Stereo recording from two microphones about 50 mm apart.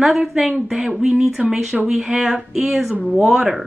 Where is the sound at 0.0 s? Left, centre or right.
Centre.